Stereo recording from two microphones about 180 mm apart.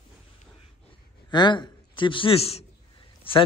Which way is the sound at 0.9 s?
25° left (ahead or behind).